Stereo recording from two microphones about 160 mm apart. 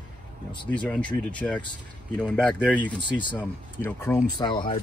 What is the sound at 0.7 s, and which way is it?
Speech, 10° left (ahead or behind).